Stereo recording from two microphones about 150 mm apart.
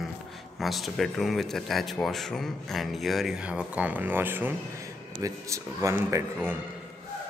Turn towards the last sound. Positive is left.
turn(degrees=-15)  # may be behind; listen again after turning